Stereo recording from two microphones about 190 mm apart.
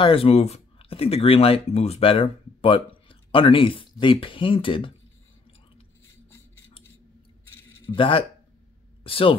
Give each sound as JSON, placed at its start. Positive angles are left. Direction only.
{"t": 0.0, "sound": "speech", "side_deg": 30}
{"t": 7.9, "sound": "speech", "side_deg": 30}